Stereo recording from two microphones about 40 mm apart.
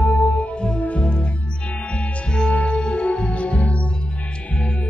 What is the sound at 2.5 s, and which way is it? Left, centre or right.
Music, left.